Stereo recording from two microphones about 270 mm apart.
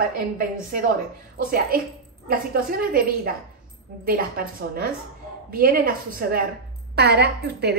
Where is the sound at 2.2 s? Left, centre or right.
Right.